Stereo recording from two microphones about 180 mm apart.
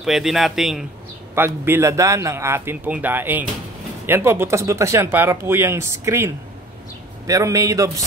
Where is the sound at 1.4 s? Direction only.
15° right (ahead or behind).